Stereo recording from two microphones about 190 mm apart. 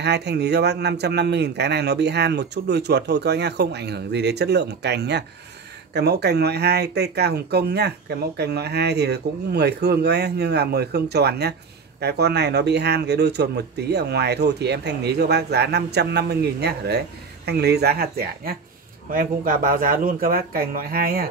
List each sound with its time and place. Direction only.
0.0 s speech: 60° right (ahead or behind)